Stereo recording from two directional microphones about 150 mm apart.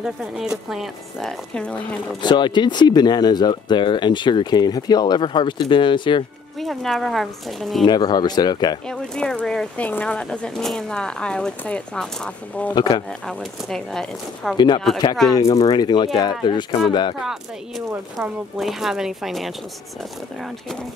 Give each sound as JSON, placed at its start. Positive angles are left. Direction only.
{"t": 0.0, "sound": "speech", "side_deg": -5}
{"t": 2.2, "sound": "speech", "side_deg": 30}
{"t": 6.6, "sound": "speech", "side_deg": 0}
{"t": 7.8, "sound": "speech", "side_deg": 25}
{"t": 8.8, "sound": "speech", "side_deg": 5}
{"t": 12.7, "sound": "speech", "side_deg": 30}
{"t": 13.3, "sound": "speech", "side_deg": 0}
{"t": 15.5, "sound": "speech", "side_deg": 25}
{"t": 17.2, "sound": "speech", "side_deg": 0}